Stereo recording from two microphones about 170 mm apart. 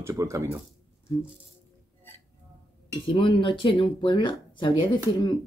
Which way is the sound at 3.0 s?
30° left (ahead or behind).